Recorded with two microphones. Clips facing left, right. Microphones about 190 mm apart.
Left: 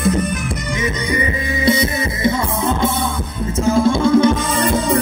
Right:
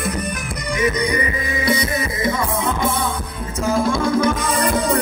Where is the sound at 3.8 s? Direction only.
25° left (ahead or behind).